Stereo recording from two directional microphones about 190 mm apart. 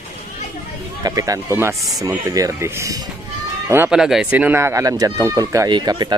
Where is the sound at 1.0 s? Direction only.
20° right (ahead or behind).